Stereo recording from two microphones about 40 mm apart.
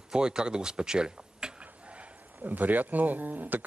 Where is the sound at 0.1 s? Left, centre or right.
Centre.